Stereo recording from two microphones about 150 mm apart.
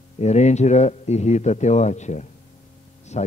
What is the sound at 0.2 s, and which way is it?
Speech, 50° left (ahead or behind).